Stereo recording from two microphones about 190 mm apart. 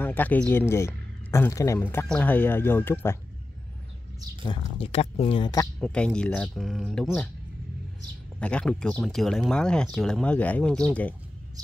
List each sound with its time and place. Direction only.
0.0 s speech: 10° left (ahead or behind)
4.5 s speech: 30° left (ahead or behind)
5.8 s speech: 5° left (ahead or behind)
8.4 s speech: 5° left (ahead or behind)